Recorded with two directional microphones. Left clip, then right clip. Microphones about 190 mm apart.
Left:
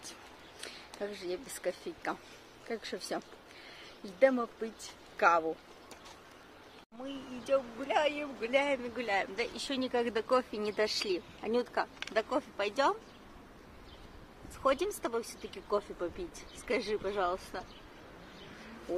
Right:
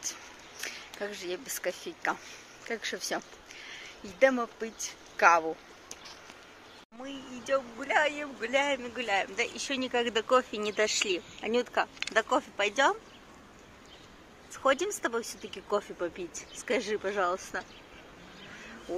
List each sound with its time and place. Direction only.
0.6 s a sound: centre (ahead or behind)
1.0 s a man's voice: centre (ahead or behind)
4.2 s a man's voice: centre (ahead or behind)
7.1 s a man's voice: 5° right (ahead or behind)
14.6 s speech: 20° right (ahead or behind)